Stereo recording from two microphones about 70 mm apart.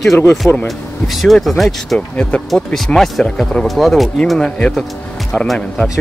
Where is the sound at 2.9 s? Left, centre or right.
Centre.